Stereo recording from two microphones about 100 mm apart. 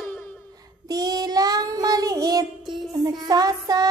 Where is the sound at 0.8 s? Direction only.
40° right (ahead or behind).